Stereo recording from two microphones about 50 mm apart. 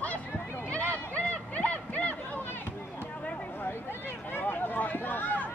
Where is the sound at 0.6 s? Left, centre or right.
Left.